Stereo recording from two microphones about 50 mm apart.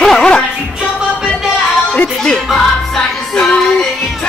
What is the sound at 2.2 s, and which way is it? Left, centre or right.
Speech, centre.